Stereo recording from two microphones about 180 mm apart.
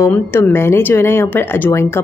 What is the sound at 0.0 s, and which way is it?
Speech, 15° left (ahead or behind).